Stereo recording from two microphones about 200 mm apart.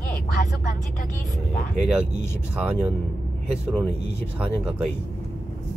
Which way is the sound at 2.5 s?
5° right (ahead or behind).